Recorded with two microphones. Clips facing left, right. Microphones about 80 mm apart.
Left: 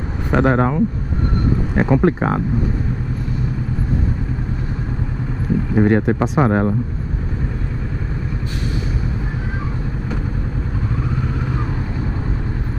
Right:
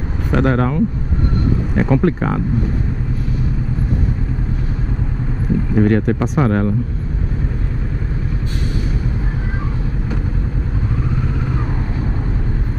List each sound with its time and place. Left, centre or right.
0.3 s speech: left
5.8 s speech: left